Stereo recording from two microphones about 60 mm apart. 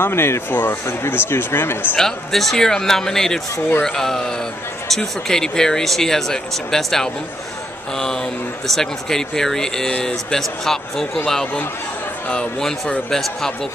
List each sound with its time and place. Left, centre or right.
0.0 s speech: left
2.0 s speech: centre
12.5 s speech: centre